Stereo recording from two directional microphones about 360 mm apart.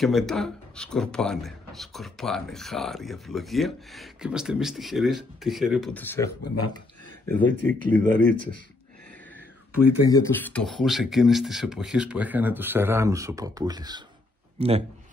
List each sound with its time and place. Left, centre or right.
0.0 s speech: centre
10.0 s speech: centre